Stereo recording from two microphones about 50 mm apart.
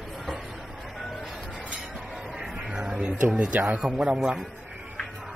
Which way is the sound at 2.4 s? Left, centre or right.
Right.